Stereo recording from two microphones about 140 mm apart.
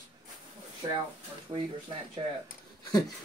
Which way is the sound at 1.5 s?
35° right (ahead or behind).